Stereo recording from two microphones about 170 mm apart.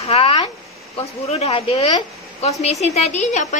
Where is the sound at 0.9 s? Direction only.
35° left (ahead or behind).